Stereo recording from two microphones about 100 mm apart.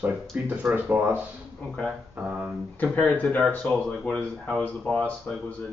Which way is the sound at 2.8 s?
15° left (ahead or behind).